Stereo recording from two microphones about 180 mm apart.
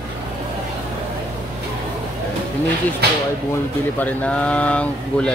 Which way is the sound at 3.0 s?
65° right (ahead or behind).